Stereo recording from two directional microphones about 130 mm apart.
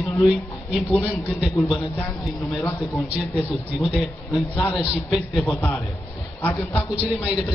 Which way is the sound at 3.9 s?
5° right (ahead or behind).